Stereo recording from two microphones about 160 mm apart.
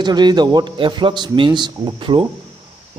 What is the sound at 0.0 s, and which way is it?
A man's voice, 25° right (ahead or behind).